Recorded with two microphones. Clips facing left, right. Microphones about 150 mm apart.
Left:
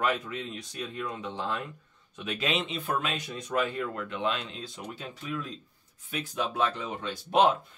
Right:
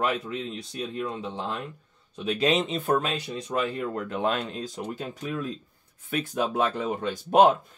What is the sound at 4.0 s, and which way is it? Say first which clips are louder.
Speech: right 6 dB; 45° right (ahead or behind).